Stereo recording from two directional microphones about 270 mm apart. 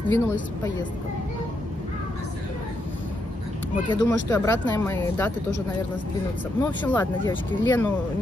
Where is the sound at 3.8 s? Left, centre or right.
Centre.